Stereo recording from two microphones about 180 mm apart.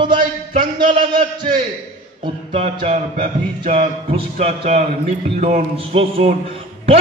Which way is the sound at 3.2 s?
45° right (ahead or behind).